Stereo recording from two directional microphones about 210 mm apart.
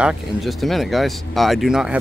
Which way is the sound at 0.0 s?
Centre (ahead or behind).